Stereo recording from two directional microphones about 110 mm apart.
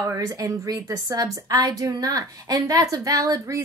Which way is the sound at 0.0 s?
30° right (ahead or behind).